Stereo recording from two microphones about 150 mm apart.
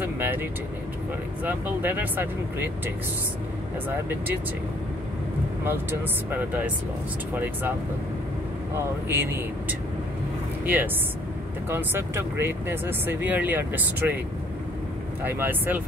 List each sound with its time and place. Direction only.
0.0 s vehicle: 15° right (ahead or behind)
1.4 s speech: 15° right (ahead or behind)
5.7 s speech: 15° right (ahead or behind)
8.7 s speech: 15° right (ahead or behind)
15.2 s speech: 15° right (ahead or behind)